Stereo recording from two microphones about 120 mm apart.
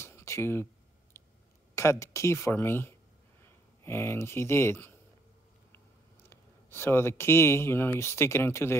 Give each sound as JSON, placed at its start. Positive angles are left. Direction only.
{"t": 0.0, "sound": "a sound", "side_deg": 20}
{"t": 1.8, "sound": "speech", "side_deg": 25}
{"t": 6.2, "sound": "speech", "side_deg": 20}